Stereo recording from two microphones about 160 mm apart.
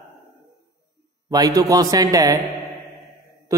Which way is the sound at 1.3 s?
20° right (ahead or behind).